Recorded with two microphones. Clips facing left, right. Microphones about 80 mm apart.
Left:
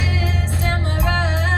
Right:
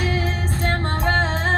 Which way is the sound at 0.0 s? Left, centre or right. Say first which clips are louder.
Right 1 dB; right.